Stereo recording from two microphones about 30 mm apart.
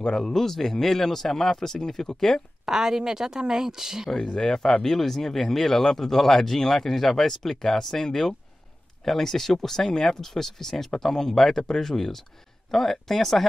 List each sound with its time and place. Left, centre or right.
0.1 s speech: centre
2.6 s speech: centre
4.3 s speech: left; by 13.5 s centre